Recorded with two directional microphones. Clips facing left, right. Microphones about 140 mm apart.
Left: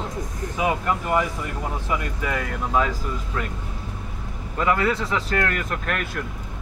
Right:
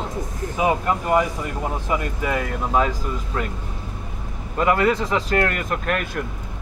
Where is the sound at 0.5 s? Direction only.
30° right (ahead or behind).